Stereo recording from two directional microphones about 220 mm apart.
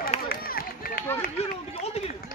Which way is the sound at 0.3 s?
40° left (ahead or behind).